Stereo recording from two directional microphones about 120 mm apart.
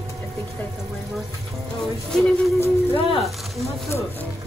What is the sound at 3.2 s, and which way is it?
Music, centre (ahead or behind).